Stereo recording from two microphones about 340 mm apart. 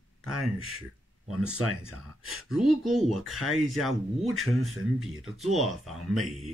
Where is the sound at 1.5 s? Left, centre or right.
Right.